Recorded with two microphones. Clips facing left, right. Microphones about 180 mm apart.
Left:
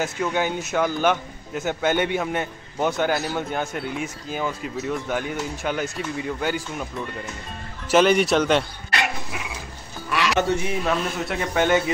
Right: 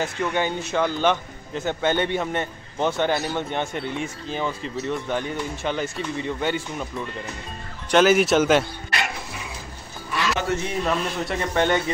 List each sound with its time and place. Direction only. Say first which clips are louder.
0.0 s a man's voice: even; 5° left (ahead or behind)
10.0 s music: left 4 dB; 75° left (ahead or behind)
10.7 s speech: even; centre (ahead or behind)